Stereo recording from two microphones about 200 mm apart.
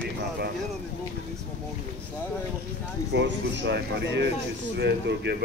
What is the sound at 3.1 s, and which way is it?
Speech, 60° right (ahead or behind).